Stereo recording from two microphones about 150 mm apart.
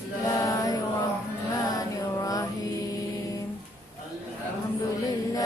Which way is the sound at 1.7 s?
25° left (ahead or behind).